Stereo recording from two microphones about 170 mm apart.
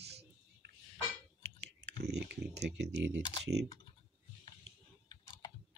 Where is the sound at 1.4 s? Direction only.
85° right.